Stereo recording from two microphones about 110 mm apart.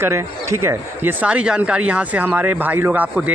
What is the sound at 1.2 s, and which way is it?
Speech, 10° right (ahead or behind).